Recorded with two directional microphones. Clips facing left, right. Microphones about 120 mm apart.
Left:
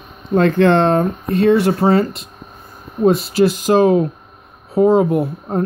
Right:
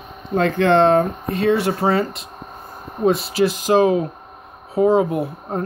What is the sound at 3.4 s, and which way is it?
Speech, 45° left (ahead or behind).